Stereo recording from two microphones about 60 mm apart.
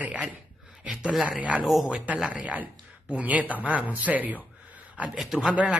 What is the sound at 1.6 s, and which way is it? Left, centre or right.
Speech, centre.